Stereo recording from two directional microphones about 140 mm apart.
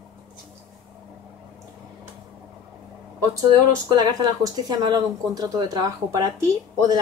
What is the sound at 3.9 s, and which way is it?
Speech, 30° right (ahead or behind).